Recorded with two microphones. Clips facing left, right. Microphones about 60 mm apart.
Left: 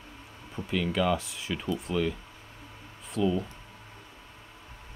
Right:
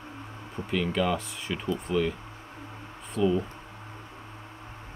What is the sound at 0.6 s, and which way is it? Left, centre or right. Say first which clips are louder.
Speech: right 1 dB; right.